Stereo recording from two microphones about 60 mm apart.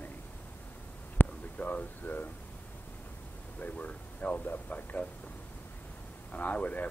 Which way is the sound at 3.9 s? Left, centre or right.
Left.